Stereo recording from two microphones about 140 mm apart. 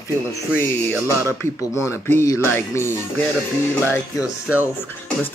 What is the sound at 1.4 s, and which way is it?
Speech, 20° left (ahead or behind).